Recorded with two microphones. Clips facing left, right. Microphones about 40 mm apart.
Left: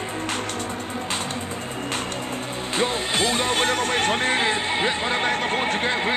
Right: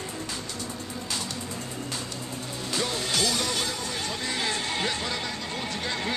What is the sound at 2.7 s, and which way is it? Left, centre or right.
Speech, left.